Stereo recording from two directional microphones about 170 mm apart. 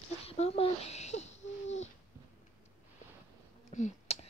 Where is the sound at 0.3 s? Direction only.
35° left (ahead or behind).